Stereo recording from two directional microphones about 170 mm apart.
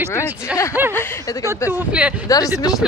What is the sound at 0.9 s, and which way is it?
Speech, 15° left (ahead or behind).